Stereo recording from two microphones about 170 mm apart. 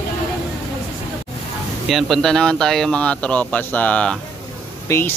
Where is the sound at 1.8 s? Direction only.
Centre (ahead or behind); by 5.0 s 15° left (ahead or behind).